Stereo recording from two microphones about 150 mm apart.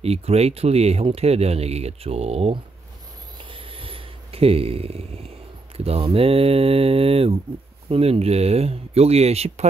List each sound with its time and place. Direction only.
0.0 s speech: 45° right (ahead or behind)
3.4 s a sound: 35° right (ahead or behind)
5.9 s speech: 40° right (ahead or behind)